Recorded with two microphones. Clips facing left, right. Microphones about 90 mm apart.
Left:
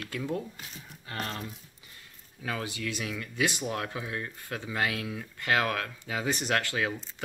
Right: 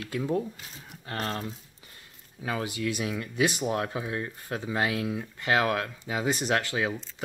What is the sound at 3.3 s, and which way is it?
Speech, 15° right (ahead or behind).